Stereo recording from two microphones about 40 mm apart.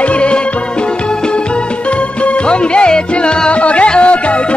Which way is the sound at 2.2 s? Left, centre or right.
Left.